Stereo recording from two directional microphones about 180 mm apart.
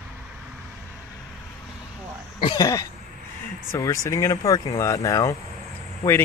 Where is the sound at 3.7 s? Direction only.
20° left (ahead or behind).